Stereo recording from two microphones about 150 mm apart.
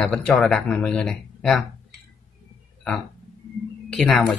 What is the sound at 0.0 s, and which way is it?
Speech, 5° left (ahead or behind).